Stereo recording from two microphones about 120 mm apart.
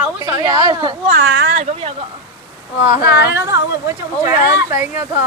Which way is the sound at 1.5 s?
70° right (ahead or behind).